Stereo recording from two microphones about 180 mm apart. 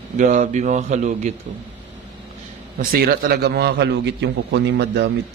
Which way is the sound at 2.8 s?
55° right (ahead or behind).